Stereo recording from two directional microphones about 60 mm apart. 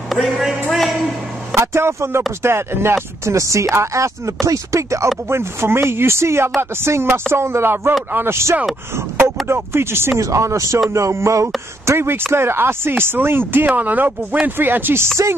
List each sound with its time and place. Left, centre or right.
0.1 s a sound: centre
1.5 s speech: right
5.3 s speech: right
10.2 s speech: right
15.2 s speech: right